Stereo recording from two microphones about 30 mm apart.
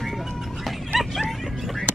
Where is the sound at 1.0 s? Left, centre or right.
Centre.